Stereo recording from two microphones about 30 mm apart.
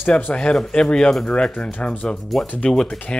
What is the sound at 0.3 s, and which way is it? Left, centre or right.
Speech, left.